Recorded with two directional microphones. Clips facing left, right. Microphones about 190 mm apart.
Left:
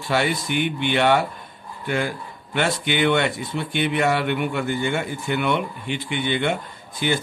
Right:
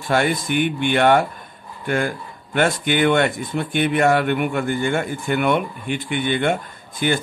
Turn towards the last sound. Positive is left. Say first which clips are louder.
# right 2 dB
turn(degrees=-50)  # may be behind; listen again after turning